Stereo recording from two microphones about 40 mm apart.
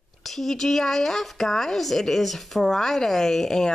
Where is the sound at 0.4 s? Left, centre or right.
Centre.